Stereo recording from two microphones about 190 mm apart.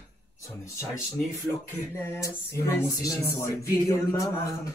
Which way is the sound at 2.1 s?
15° left (ahead or behind).